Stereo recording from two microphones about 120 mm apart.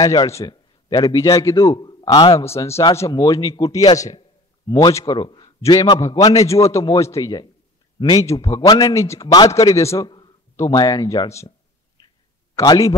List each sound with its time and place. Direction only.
0.0 s a man's voice: 30° left (ahead or behind)
0.5 s a man's voice: 35° left (ahead or behind)
2.4 s a man's voice: 20° left (ahead or behind)
3.1 s speech: 35° left (ahead or behind)
5.6 s a man's voice: 30° left (ahead or behind)
10.0 s a sound: 40° left (ahead or behind)
10.5 s a man's voice: 25° left (ahead or behind)
12.6 s a man's voice: 30° left (ahead or behind)